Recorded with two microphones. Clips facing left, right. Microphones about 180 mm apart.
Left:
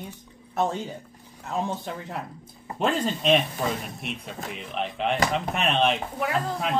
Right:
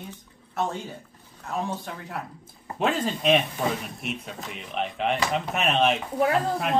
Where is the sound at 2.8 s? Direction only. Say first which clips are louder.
Even; centre (ahead or behind).